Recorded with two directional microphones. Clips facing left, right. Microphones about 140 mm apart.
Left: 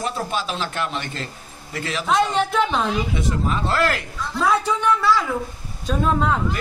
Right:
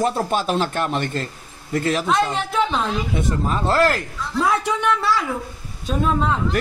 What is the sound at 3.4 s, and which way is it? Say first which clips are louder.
Speech: right 4 dB; 40° right (ahead or behind).